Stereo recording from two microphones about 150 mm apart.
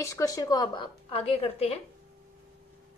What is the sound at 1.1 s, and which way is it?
Speech, 40° left (ahead or behind).